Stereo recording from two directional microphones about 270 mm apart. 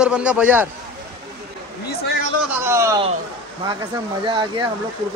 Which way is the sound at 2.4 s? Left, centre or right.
Centre.